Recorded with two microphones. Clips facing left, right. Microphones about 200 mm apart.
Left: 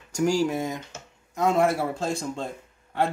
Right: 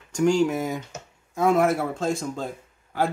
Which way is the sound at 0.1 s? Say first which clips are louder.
Right 3 dB; centre (ahead or behind).